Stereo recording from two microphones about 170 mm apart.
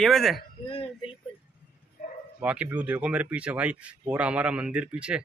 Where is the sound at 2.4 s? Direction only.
10° right (ahead or behind).